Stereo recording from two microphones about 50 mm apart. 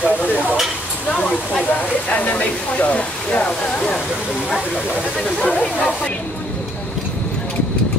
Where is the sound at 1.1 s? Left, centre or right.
Centre.